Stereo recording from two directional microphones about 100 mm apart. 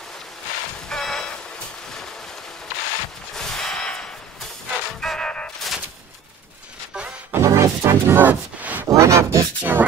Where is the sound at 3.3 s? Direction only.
5° left (ahead or behind).